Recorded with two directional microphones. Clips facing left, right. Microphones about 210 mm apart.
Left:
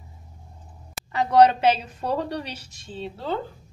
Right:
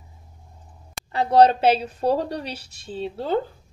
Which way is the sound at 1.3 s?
30° right (ahead or behind).